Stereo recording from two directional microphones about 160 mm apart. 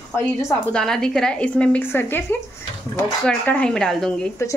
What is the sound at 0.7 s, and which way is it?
A woman's voice, 5° left (ahead or behind).